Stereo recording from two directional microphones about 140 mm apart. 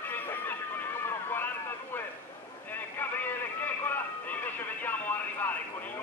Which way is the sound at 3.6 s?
15° left (ahead or behind).